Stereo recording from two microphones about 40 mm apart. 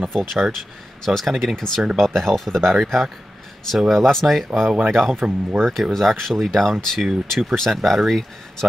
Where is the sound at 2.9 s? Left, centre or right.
Centre.